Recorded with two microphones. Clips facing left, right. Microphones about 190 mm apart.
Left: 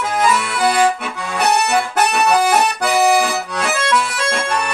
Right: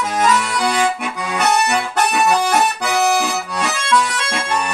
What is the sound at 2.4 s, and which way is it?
Accordion, 10° left (ahead or behind).